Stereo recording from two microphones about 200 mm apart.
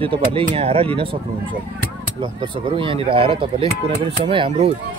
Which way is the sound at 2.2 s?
25° right (ahead or behind).